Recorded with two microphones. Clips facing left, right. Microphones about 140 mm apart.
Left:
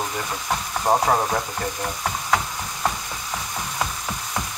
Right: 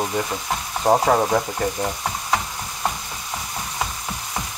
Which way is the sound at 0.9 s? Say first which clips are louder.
Right 3 dB; 55° right (ahead or behind).